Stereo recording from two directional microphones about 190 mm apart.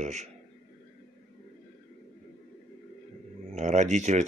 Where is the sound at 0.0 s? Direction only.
40° right (ahead or behind).